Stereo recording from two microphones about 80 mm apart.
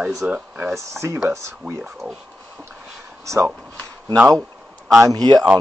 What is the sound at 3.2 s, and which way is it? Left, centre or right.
Speech, right.